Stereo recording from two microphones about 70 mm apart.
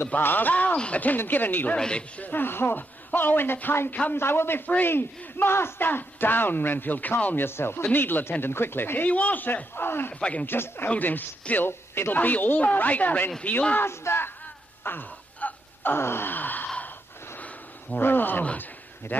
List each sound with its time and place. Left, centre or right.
0.0 s speech: left
1.8 s a man's voice: centre
13.8 s a man's voice: left
14.8 s wail: left
17.4 s a sound: left